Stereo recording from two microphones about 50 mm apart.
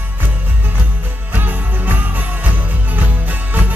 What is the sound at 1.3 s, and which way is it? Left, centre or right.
Jingle bell, right.